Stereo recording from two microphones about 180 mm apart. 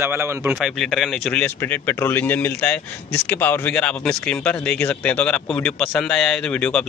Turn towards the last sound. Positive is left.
turn(degrees=5)  # may be behind; listen again after turning